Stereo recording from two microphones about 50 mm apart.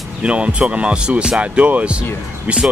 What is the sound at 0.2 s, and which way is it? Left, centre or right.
Speech, right.